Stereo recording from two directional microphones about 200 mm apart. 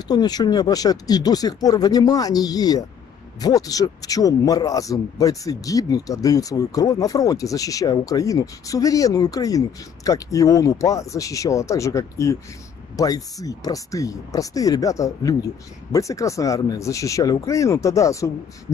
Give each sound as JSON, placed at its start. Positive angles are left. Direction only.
{"t": 0.1, "sound": "a man's voice", "side_deg": 20}